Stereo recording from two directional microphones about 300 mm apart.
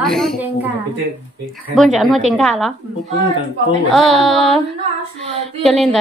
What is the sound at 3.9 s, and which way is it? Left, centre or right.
Speech, centre.